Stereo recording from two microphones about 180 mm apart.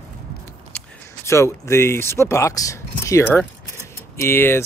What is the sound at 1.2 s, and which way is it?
Speech, 15° left (ahead or behind).